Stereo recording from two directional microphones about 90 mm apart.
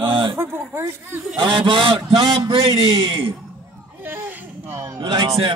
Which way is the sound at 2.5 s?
90° right.